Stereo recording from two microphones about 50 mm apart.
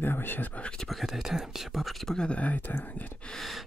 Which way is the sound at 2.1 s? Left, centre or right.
Left.